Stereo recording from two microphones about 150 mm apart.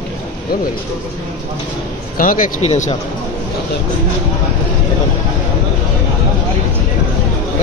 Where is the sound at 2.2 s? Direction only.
65° left (ahead or behind).